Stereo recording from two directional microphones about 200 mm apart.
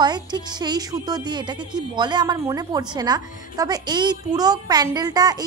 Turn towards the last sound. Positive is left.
turn(degrees=-20)  # may be behind; listen again after turning